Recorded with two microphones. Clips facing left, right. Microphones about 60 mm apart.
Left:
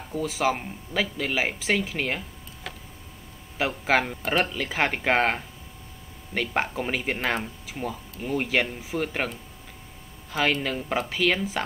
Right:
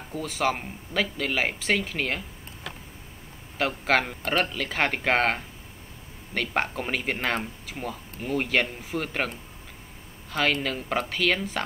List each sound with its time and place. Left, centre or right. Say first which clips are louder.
0.1 s speech: left 2 dB; centre
3.5 s speech: even; centre
10.3 s speech: left 1 dB; centre